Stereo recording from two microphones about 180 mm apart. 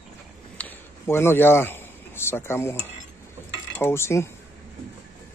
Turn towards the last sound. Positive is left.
turn(degrees=15)  # may be behind; listen again after turning